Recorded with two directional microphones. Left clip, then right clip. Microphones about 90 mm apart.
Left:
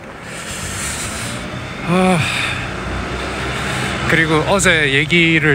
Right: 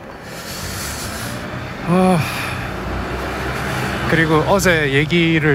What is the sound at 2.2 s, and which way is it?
Gasp, 20° right (ahead or behind).